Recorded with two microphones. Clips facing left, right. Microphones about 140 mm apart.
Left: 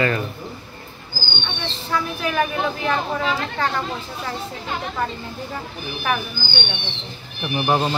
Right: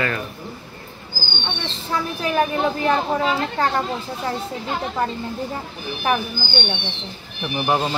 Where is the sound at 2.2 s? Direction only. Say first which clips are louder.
Right 4 dB; 30° right (ahead or behind).